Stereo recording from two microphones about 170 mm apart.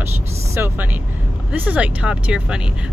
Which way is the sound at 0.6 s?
10° right (ahead or behind).